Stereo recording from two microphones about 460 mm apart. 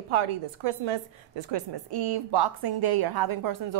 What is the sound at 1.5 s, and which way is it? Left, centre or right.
A woman's voice, right.